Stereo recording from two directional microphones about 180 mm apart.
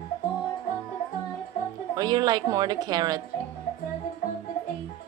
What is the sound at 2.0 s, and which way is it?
A woman's voice, 20° right (ahead or behind).